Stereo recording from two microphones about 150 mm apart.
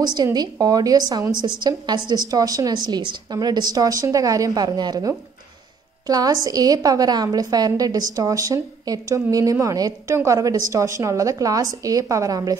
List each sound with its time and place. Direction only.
0.0 s a woman's voice: 25° right (ahead or behind)